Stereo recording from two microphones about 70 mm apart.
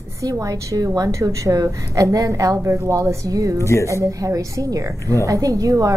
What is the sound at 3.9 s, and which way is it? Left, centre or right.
A woman's voice, right.